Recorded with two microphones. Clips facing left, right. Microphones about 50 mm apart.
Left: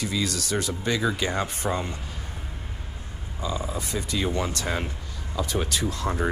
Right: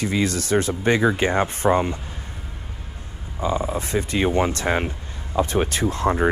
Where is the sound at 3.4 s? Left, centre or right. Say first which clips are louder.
Right 7 dB; right.